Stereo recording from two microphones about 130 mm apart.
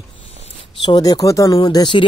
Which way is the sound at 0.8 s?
30° left (ahead or behind).